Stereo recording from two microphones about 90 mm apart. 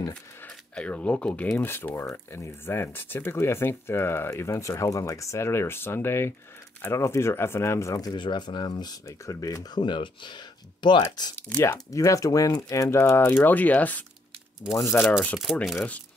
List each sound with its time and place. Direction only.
0.7 s speech: 15° left (ahead or behind)
1.6 s speech: 25° left (ahead or behind)
8.1 s speech: 55° left (ahead or behind)
9.0 s speech: 35° left (ahead or behind)
9.8 s speech: 60° left (ahead or behind)
11.1 s speech: 50° left (ahead or behind)
11.3 s speech: 15° left (ahead or behind)
11.6 s speech: 35° left (ahead or behind)
15.5 s speech: 5° right (ahead or behind)